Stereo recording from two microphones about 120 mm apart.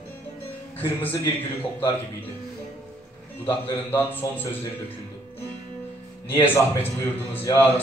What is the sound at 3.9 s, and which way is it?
Speech, 15° left (ahead or behind).